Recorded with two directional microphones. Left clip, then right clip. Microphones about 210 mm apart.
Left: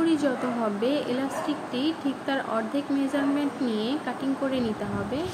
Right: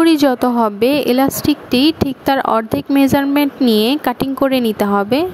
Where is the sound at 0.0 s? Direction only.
50° right (ahead or behind).